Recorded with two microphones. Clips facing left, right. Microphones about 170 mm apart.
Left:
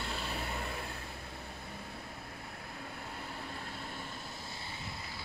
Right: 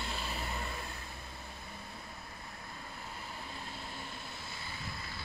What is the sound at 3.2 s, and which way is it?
Vehicle, 55° left (ahead or behind).